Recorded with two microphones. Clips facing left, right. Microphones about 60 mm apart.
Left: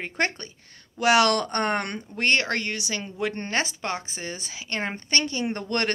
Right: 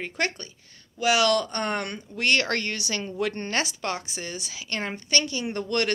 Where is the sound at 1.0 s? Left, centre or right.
Left.